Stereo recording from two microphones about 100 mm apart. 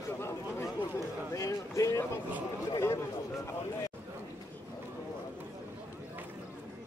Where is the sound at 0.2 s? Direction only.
25° left (ahead or behind).